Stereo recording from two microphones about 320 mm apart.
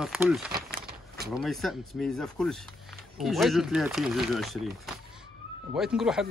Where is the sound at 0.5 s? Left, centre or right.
Right.